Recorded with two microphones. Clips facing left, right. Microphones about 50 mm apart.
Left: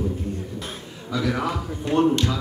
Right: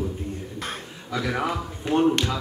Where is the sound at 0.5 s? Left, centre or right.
Right.